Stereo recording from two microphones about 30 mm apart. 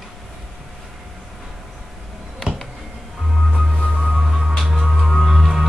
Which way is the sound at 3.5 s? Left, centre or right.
Centre.